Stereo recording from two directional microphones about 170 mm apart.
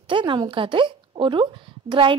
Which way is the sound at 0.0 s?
30° right (ahead or behind).